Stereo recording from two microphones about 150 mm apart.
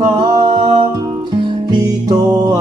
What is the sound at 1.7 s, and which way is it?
Music, 25° right (ahead or behind).